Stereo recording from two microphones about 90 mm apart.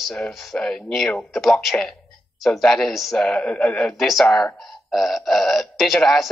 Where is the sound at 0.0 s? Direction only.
5° left (ahead or behind).